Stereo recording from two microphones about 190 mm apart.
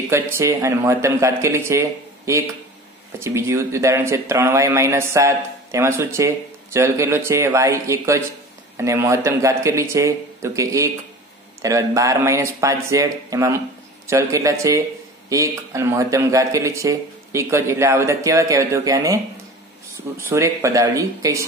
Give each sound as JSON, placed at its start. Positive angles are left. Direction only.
{"t": 0.1, "sound": "speech", "side_deg": -15}
{"t": 20.2, "sound": "speech", "side_deg": -15}